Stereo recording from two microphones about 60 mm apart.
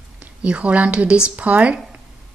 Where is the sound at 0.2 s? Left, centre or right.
Centre.